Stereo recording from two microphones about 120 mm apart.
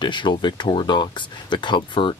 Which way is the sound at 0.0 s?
40° left (ahead or behind).